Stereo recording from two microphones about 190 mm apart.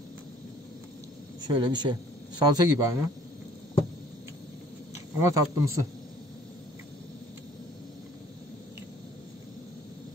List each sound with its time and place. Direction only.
1.5 s speech: 25° right (ahead or behind)
5.2 s speech: 15° right (ahead or behind)